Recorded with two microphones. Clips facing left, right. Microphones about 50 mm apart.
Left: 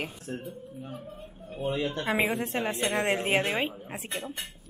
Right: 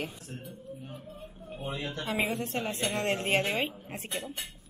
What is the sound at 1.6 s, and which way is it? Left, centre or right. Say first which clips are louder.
A woman's voice: left 6 dB; left.